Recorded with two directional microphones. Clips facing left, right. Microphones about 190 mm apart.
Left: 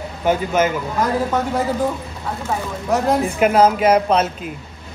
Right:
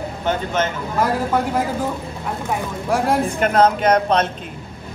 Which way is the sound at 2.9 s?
10° right (ahead or behind).